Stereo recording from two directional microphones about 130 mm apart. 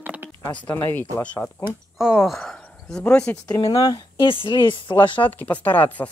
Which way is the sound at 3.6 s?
40° left (ahead or behind).